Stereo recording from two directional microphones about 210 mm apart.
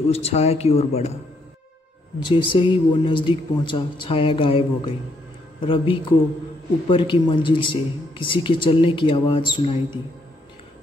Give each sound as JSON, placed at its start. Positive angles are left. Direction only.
{"t": 0.1, "sound": "speech", "side_deg": 30}
{"t": 2.2, "sound": "speech", "side_deg": 25}